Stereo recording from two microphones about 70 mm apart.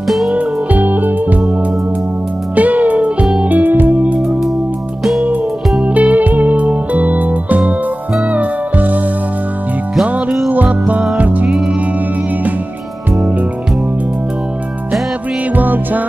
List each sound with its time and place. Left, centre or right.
0.3 s music: right
2.5 s music: right
5.8 s music: right
10.5 s music: right
15.5 s music: right